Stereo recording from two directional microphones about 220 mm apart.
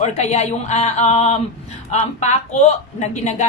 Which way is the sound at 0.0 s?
30° left (ahead or behind).